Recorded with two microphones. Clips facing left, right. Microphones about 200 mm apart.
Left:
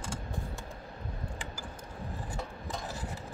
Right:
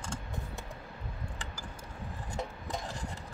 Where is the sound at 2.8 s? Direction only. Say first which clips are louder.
Left 1 dB; 5° left (ahead or behind).